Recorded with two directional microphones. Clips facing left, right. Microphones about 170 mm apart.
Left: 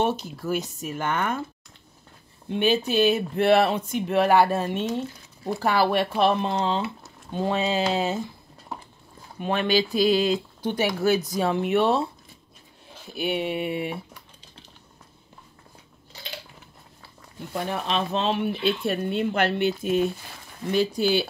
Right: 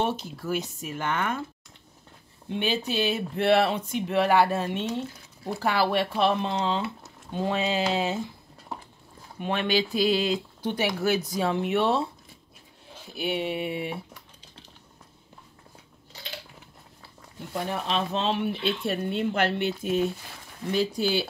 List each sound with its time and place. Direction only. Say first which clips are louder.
0.0 s speech: left 3 dB; 45° left (ahead or behind)
2.6 s speech: left 6 dB; 50° left (ahead or behind)
9.4 s speech: left 3 dB; 40° left (ahead or behind)
13.1 s speech: left 2 dB; 55° left (ahead or behind)
17.6 s speech: left 2 dB; 70° left (ahead or behind)